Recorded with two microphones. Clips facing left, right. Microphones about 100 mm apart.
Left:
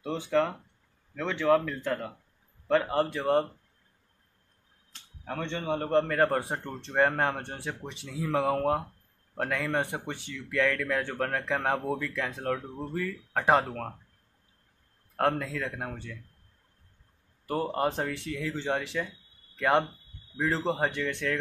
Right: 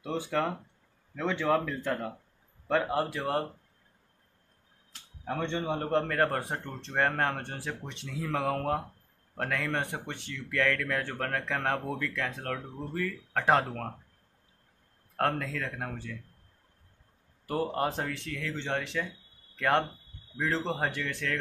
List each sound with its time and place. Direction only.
0.0 s a man's voice: 5° right (ahead or behind)
4.9 s tick-tock: 5° right (ahead or behind)
5.5 s a man's voice: 15° right (ahead or behind)
5.8 s speech: centre (ahead or behind)
15.1 s speech: 5° left (ahead or behind)
17.5 s speech: centre (ahead or behind)